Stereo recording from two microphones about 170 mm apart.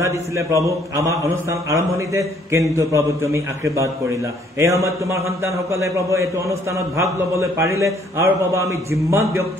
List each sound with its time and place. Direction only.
0.0 s a man's voice: 15° right (ahead or behind)